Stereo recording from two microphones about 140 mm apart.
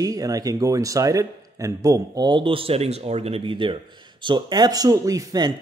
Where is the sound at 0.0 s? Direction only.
25° right (ahead or behind).